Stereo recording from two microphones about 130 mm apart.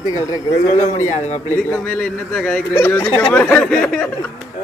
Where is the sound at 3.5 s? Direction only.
5° left (ahead or behind).